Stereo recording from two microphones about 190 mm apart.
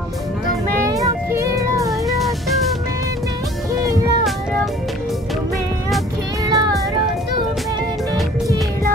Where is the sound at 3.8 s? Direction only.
15° right (ahead or behind).